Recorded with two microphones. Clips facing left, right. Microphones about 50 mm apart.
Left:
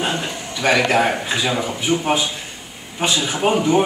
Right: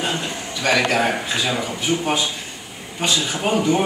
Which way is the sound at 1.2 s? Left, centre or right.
Centre.